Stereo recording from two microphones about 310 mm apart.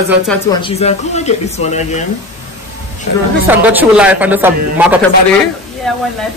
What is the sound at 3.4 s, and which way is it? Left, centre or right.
Speech, centre.